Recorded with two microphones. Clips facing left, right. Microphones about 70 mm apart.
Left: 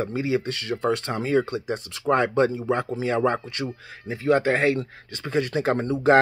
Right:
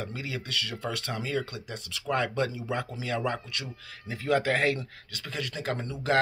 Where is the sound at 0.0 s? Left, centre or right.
Left.